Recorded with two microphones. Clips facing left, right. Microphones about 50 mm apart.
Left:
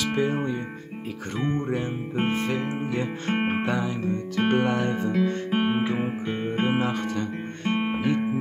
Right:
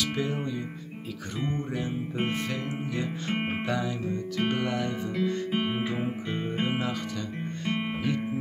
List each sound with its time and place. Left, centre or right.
0.0 s music: left
2.1 s speech: left
3.5 s music: left
5.6 s guitar: left
7.8 s music: left